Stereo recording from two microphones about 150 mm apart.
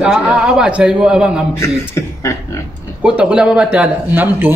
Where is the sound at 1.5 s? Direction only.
20° left (ahead or behind).